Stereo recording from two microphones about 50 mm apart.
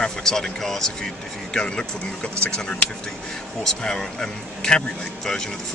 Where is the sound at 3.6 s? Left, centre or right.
Centre.